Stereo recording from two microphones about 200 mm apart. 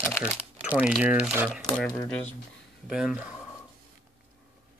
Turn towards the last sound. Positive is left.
turn(degrees=-5)  # may be behind; listen again after turning